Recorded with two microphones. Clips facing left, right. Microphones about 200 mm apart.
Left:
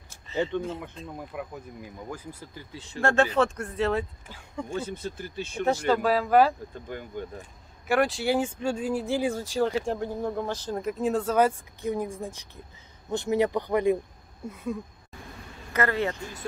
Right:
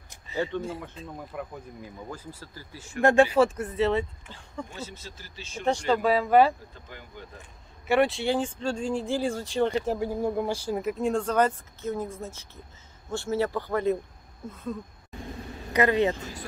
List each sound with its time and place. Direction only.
0.3 s a sound: 15° right (ahead or behind)
1.0 s speech: 5° right (ahead or behind)
1.3 s speech: 5° left (ahead or behind)
2.0 s speech: 15° left (ahead or behind)
3.0 s speech: 15° right (ahead or behind); by 4.6 s 5° left (ahead or behind)
4.6 s speech: 55° left (ahead or behind)
5.7 s speech: 5° left (ahead or behind)
7.9 s speech: centre (ahead or behind)
9.9 s speech: 10° right (ahead or behind); by 14.8 s 10° left (ahead or behind)
15.7 s speech: 20° right (ahead or behind)